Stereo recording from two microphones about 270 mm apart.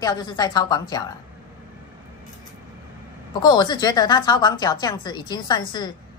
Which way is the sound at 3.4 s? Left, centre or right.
Centre.